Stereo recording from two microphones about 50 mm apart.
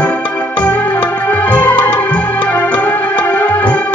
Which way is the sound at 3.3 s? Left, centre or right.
Left.